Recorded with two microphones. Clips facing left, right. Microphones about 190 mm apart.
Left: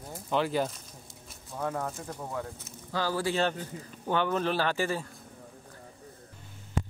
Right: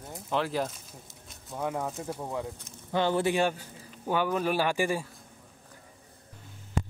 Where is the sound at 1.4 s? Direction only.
15° right (ahead or behind).